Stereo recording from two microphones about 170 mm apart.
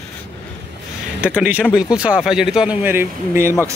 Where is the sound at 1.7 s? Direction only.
5° right (ahead or behind).